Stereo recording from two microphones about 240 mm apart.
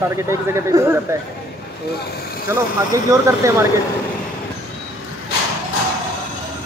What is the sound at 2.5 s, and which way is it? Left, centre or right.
Speech, centre.